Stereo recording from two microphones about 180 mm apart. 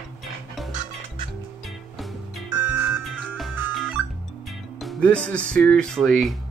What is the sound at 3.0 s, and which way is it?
Music, centre (ahead or behind).